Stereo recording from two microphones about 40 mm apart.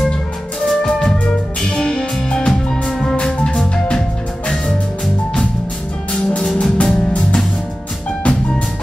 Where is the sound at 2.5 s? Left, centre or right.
Centre.